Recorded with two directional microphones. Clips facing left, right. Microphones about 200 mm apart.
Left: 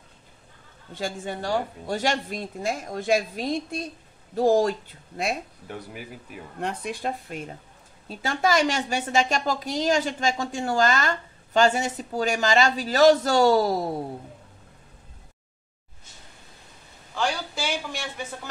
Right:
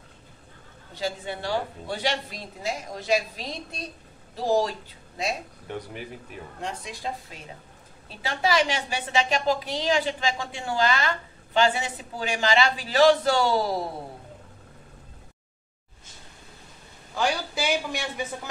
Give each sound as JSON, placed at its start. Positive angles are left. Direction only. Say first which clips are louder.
{"t": 0.9, "sound": "a woman's voice", "louder": "even", "side_deg": 50}
{"t": 5.7, "sound": "speech", "louder": "right 4 dB", "side_deg": 5}
{"t": 6.6, "sound": "speech", "louder": "left 5 dB", "side_deg": 60}
{"t": 8.1, "sound": "a woman's voice", "louder": "left 2 dB", "side_deg": 45}
{"t": 17.1, "sound": "speech", "louder": "right 1 dB", "side_deg": -10}